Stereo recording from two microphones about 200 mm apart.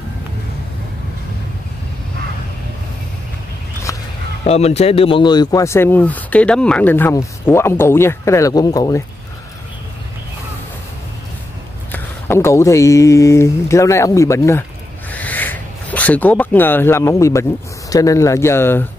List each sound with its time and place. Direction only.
3.9 s a sound: 15° left (ahead or behind)
4.5 s speech: 30° left (ahead or behind)
11.9 s speech: 10° left (ahead or behind)